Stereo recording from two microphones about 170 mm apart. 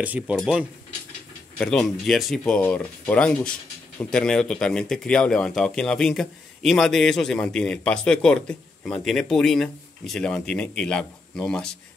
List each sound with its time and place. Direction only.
0.0 s speech: 10° right (ahead or behind)